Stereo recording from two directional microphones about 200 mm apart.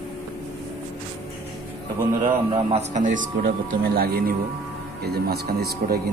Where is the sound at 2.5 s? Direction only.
25° right (ahead or behind).